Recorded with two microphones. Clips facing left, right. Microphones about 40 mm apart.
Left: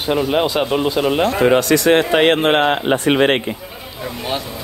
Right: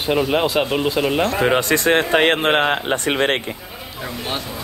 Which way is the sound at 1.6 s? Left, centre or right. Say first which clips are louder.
Left 3 dB; right.